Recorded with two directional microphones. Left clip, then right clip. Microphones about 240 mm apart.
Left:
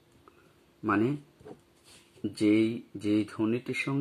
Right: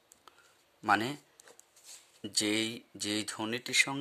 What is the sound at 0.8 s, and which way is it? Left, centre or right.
Speech, right.